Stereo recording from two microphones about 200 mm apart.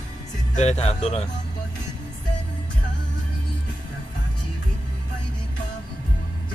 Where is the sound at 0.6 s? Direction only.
35° left (ahead or behind).